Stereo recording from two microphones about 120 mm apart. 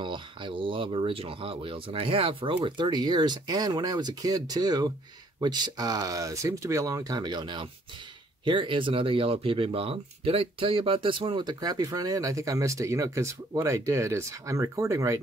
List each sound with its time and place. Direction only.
0.0 s speech: 40° right (ahead or behind); by 15.1 s 25° right (ahead or behind)